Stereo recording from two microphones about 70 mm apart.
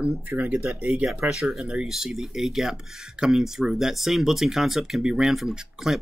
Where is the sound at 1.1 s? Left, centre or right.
Centre.